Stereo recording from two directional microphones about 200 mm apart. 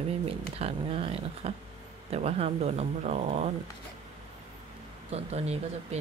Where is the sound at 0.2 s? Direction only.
30° right (ahead or behind).